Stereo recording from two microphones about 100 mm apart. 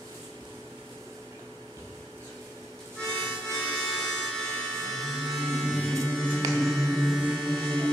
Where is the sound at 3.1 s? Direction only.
10° left (ahead or behind).